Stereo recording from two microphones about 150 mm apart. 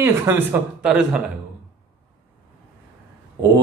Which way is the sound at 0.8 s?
5° right (ahead or behind).